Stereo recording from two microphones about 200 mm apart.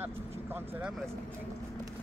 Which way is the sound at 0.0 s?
10° right (ahead or behind).